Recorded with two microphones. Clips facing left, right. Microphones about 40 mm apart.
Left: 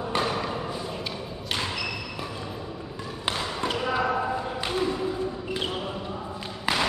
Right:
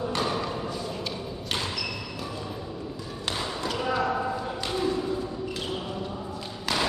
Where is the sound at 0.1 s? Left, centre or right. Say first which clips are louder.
Left 1 dB; centre.